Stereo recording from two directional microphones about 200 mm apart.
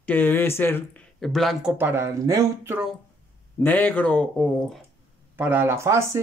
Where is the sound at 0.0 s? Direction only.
10° left (ahead or behind); by 2.9 s 10° right (ahead or behind).